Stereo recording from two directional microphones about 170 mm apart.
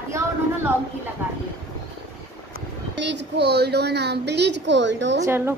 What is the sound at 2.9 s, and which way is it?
A woman's voice, 90° right.